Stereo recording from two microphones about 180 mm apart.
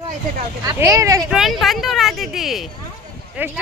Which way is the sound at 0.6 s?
15° right (ahead or behind).